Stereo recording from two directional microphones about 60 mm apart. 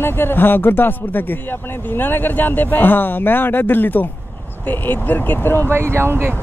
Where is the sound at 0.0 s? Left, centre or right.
Left.